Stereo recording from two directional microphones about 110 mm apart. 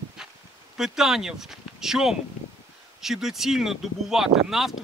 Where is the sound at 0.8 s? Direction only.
5° right (ahead or behind).